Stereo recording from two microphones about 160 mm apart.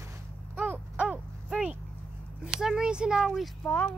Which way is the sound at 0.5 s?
10° right (ahead or behind).